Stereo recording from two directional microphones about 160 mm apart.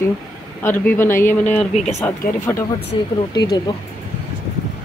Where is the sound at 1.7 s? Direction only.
45° left (ahead or behind).